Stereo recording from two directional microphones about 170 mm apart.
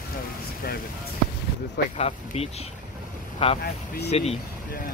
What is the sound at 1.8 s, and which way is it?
Speech, 65° left (ahead or behind).